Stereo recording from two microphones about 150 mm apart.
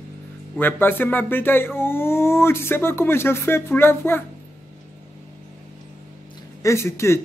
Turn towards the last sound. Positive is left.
turn(degrees=15)  # may be behind; listen again after turning